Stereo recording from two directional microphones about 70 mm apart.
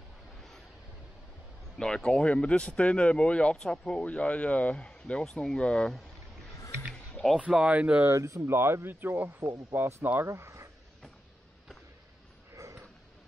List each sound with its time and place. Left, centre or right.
1.8 s speech: centre
6.9 s music: centre
7.3 s speech: centre
8.0 s speech: right
10.2 s a sound: right